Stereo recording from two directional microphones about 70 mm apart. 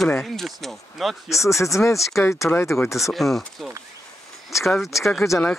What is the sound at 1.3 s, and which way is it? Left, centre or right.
Speech, left.